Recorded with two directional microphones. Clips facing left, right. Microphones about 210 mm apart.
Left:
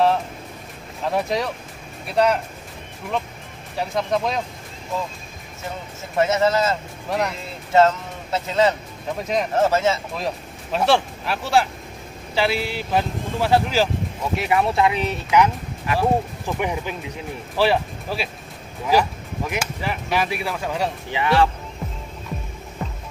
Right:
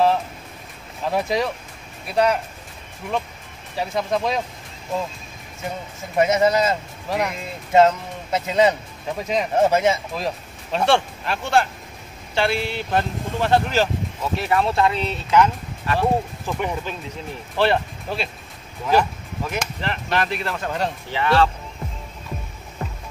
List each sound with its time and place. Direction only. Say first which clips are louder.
1.0 s speech: right 1 dB; centre (ahead or behind)
3.9 s speech: even; centre (ahead or behind)
6.1 s speech: right 1 dB; 15° right (ahead or behind)
7.1 s speech: even; centre (ahead or behind)
7.7 s speech: right 1 dB; 15° right (ahead or behind)
9.1 s speech: even; centre (ahead or behind)
9.6 s speech: right 2 dB; 15° right (ahead or behind)
10.1 s speech: even; centre (ahead or behind)